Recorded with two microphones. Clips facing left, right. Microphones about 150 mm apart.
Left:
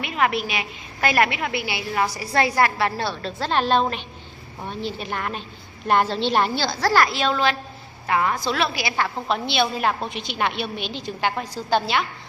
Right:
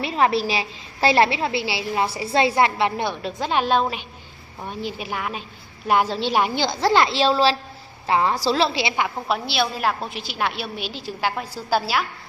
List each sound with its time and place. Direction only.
0.0 s a woman's voice: 30° right (ahead or behind)
8.9 s a woman's voice: 10° right (ahead or behind)